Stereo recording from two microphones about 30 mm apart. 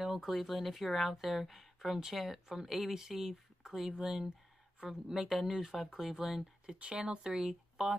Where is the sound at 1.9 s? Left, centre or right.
Centre.